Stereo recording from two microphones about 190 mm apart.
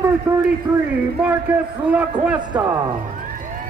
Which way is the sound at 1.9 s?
5° right (ahead or behind).